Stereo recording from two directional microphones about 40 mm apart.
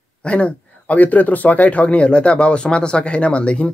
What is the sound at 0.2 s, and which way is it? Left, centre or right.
Speech, left.